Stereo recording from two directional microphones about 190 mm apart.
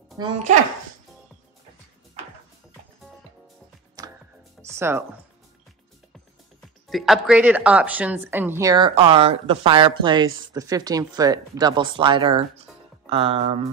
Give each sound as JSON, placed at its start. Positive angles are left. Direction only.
{"t": 0.2, "sound": "a woman's voice", "side_deg": -20}
{"t": 4.0, "sound": "music", "side_deg": -20}
{"t": 6.9, "sound": "a woman's voice", "side_deg": 0}